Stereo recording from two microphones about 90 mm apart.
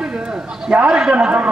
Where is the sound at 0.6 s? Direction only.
10° right (ahead or behind).